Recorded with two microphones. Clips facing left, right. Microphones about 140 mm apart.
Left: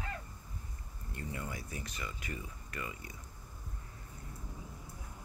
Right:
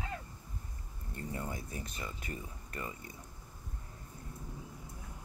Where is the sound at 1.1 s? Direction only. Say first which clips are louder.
Right 2 dB; 35° right (ahead or behind).